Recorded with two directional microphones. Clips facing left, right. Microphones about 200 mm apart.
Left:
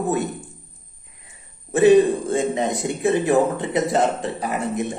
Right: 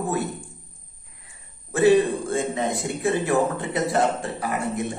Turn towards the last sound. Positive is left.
turn(degrees=20)  # may be behind; listen again after turning